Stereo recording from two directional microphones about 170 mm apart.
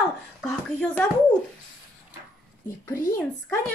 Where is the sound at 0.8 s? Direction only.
10° left (ahead or behind).